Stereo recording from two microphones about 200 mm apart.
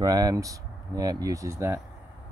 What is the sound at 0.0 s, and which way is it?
Speech, 20° right (ahead or behind).